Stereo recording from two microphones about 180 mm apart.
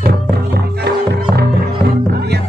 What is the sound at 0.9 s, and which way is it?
Music, 65° right (ahead or behind).